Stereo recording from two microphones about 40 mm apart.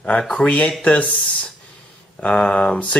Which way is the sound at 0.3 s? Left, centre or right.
Left.